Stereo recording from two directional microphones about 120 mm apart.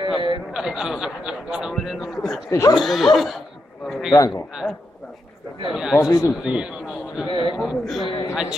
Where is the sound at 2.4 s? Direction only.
25° left (ahead or behind).